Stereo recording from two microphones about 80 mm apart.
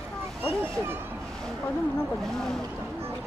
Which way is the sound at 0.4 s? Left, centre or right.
Right.